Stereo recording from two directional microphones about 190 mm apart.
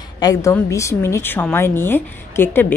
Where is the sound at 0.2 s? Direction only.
15° left (ahead or behind).